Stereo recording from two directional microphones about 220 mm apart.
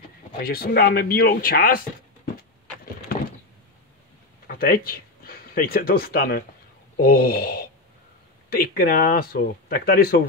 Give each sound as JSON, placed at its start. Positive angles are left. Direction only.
{"t": 0.4, "sound": "speech", "side_deg": 40}
{"t": 4.5, "sound": "speech", "side_deg": 40}